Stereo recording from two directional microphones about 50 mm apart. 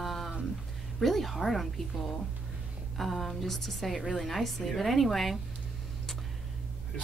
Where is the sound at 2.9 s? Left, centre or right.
Centre.